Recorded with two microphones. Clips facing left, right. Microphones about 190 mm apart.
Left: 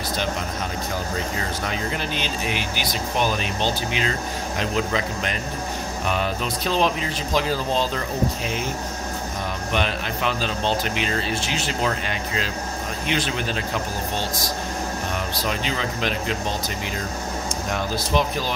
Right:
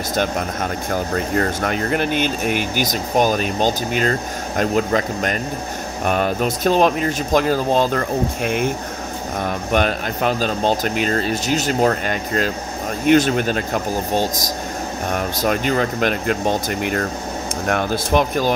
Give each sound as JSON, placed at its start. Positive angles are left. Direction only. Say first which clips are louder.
{"t": 0.1, "sound": "speech", "louder": "right 6 dB", "side_deg": -50}
{"t": 15.0, "sound": "speech", "louder": "right 10 dB", "side_deg": -50}